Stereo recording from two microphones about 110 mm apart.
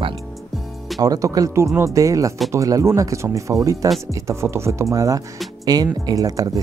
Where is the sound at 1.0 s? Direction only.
35° right (ahead or behind).